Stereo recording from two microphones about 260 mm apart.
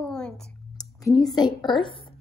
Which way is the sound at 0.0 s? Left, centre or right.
Centre.